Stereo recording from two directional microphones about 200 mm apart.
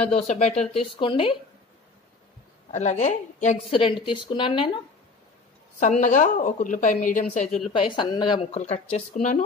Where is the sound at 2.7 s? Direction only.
35° left (ahead or behind).